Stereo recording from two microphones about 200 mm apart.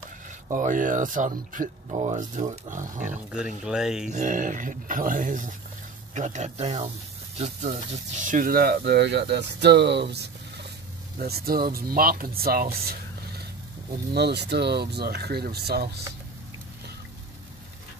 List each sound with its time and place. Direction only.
0.5 s speech: 40° right (ahead or behind)
3.3 s speech: 5° right (ahead or behind)
4.1 s speech: 40° right (ahead or behind)
14.1 s speech: 55° right (ahead or behind)